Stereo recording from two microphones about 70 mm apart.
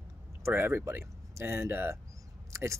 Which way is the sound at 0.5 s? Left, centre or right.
Right.